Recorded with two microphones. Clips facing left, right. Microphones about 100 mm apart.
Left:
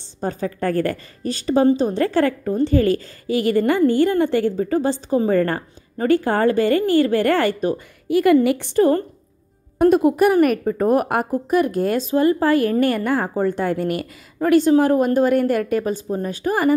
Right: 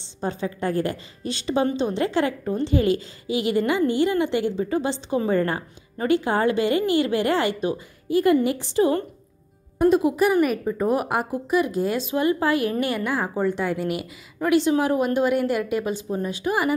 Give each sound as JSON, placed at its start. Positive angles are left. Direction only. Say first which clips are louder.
{"t": 0.2, "sound": "a woman's voice", "louder": "left 3 dB", "side_deg": 45}
{"t": 8.1, "sound": "a woman's voice", "louder": "left 4 dB", "side_deg": 75}
{"t": 8.5, "sound": "a woman's voice", "louder": "left 4 dB", "side_deg": 60}